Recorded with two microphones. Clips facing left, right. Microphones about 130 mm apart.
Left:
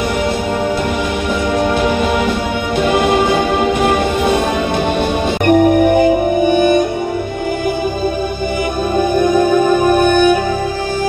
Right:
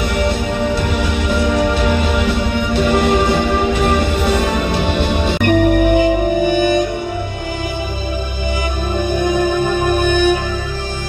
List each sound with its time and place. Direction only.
5.4 s music: 45° left (ahead or behind)
9.9 s music: 55° left (ahead or behind)